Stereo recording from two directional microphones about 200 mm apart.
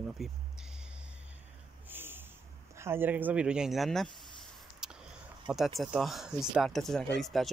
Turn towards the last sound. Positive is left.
turn(degrees=0)  # may be behind; listen again after turning